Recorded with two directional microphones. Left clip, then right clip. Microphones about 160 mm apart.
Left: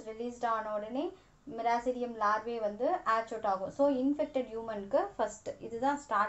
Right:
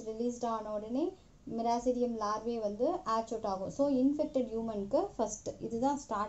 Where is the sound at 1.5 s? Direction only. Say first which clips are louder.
Even; 10° right (ahead or behind).